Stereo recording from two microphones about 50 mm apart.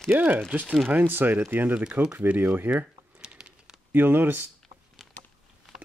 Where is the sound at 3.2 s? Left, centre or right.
Centre.